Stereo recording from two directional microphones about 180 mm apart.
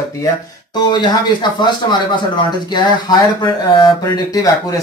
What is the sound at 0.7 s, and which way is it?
Speech, 25° left (ahead or behind).